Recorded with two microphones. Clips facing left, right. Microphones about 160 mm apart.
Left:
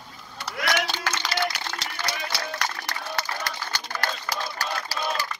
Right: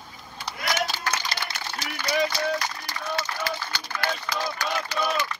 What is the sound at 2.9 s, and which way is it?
Run, 70° left (ahead or behind).